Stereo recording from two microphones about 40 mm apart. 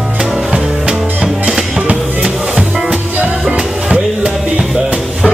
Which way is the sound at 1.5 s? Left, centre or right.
Centre.